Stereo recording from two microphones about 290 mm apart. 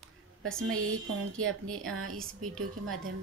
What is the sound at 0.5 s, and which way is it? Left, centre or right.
Speech, right.